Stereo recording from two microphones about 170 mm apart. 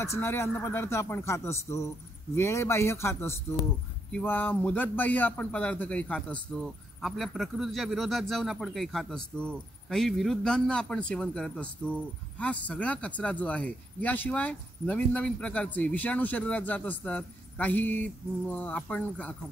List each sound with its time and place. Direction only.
0.0 s speech: 15° left (ahead or behind)